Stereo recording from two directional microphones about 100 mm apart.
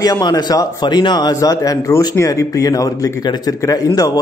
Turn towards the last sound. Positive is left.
turn(degrees=35)  # may be behind; listen again after turning